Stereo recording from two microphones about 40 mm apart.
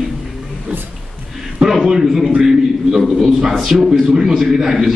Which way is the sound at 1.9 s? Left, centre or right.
Centre.